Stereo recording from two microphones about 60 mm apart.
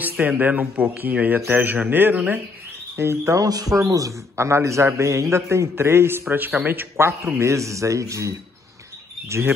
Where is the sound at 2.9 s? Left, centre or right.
Right.